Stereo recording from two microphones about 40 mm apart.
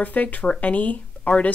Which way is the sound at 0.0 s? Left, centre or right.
Left.